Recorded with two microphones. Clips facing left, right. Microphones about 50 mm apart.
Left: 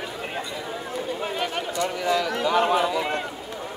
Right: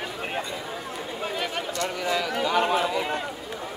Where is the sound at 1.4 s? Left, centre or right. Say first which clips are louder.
Left 1 dB; centre.